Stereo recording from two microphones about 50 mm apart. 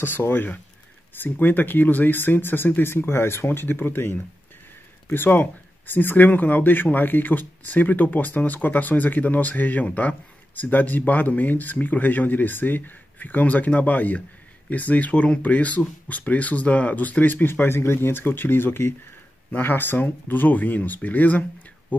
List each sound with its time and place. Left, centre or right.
0.0 s speech: left